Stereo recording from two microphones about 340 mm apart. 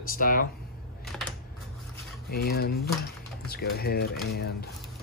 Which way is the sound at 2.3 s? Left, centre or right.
Left.